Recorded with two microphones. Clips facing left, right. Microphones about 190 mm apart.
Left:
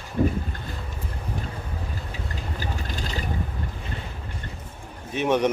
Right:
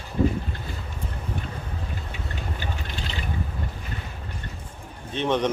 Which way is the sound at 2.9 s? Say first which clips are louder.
Left 3 dB; 40° left (ahead or behind).